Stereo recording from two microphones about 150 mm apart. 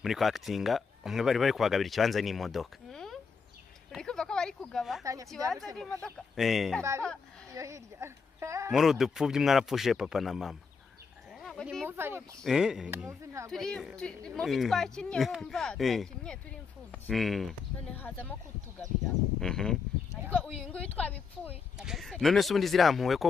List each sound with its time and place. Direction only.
0.0 s speech: centre (ahead or behind)
5.0 s speech: 20° right (ahead or behind)
5.8 s speech: 5° left (ahead or behind)
7.5 s speech: 20° right (ahead or behind)
8.7 s speech: centre (ahead or behind)
11.3 s a sound: centre (ahead or behind)
11.8 s speech: 15° right (ahead or behind)
12.4 s speech: 5° right (ahead or behind)
13.2 s speech: 20° right (ahead or behind)
13.5 s speech: 5° left (ahead or behind)
17.9 s speech: 10° left (ahead or behind)
19.4 s speech: 5° left (ahead or behind)
21.7 s speech: centre (ahead or behind)